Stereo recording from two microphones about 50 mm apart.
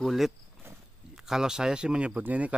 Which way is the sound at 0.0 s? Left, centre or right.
Centre.